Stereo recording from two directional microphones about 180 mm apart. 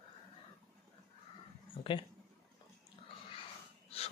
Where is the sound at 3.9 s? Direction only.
35° left (ahead or behind).